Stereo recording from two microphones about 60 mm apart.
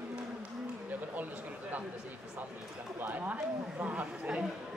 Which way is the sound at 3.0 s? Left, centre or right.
Right.